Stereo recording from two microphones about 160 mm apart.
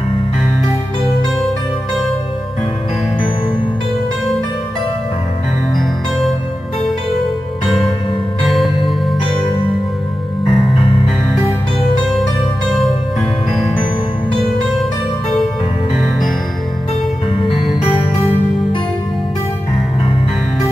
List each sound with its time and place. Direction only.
5.8 s music: centre (ahead or behind)
10.4 s music: 30° left (ahead or behind)
17.3 s music: 35° left (ahead or behind)